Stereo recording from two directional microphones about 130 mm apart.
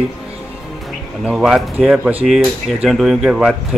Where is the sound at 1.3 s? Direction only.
5° right (ahead or behind).